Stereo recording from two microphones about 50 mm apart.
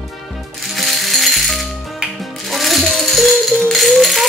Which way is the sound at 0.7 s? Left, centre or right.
Centre.